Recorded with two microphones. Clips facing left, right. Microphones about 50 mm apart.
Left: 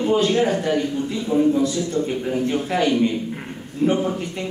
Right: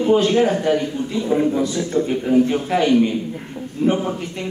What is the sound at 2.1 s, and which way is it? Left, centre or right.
A man's voice, centre.